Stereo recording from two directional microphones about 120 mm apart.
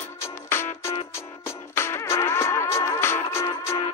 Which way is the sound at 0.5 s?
20° left (ahead or behind).